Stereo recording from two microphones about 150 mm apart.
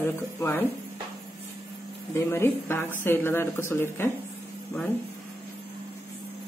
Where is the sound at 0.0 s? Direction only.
15° left (ahead or behind).